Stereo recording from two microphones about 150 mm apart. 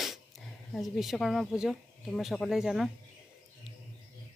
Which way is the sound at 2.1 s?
Centre (ahead or behind).